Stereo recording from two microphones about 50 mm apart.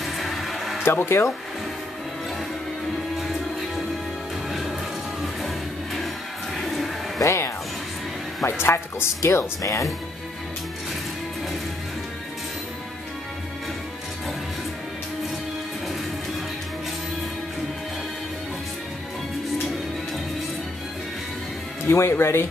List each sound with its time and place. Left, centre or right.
0.0 s a sound: centre
0.8 s speech: left
4.5 s music: centre
6.5 s a sound: centre
7.2 s music: left
8.5 s speech: left
21.8 s speech: left